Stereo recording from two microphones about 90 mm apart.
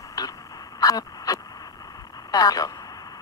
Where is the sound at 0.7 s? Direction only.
45° left (ahead or behind).